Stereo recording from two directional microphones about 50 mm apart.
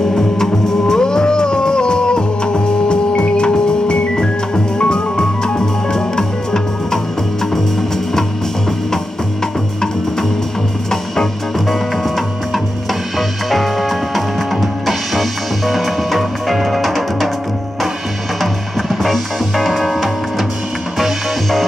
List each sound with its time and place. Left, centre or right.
0.1 s music: centre
13.5 s music: centre
18.4 s music: centre